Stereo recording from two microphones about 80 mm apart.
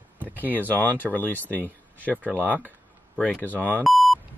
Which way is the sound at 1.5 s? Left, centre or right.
Right.